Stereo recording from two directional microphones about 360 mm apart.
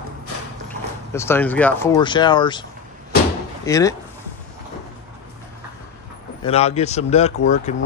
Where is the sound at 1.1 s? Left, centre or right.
Centre.